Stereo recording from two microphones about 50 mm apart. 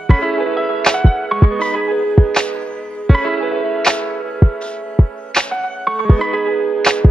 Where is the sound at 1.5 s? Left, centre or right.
Centre.